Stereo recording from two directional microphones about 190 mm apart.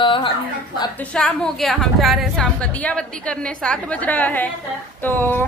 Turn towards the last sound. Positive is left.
turn(degrees=10)  # may be behind; listen again after turning